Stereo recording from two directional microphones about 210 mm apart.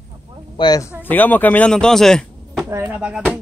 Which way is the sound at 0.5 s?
20° left (ahead or behind).